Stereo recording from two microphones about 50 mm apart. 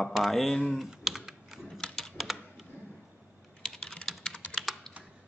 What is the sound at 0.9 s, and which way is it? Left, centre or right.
Typing, centre.